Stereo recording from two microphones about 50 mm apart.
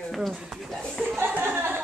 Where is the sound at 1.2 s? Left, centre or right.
Right.